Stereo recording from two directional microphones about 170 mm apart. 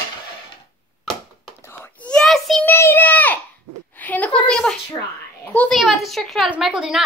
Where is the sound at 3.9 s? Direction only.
10° left (ahead or behind).